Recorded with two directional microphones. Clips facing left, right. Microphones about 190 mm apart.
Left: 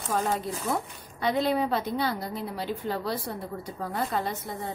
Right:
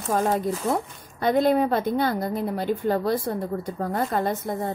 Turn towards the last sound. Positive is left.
turn(degrees=-50)  # may be behind; listen again after turning